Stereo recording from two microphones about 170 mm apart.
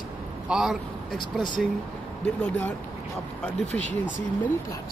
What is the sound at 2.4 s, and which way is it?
Speech, 10° left (ahead or behind).